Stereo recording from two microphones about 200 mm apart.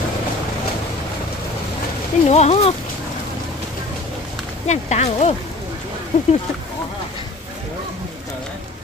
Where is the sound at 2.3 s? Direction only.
30° left (ahead or behind).